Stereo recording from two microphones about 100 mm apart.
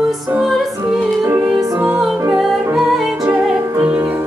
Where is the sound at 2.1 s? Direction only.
20° right (ahead or behind).